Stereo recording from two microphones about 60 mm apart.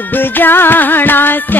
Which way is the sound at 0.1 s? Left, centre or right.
Left.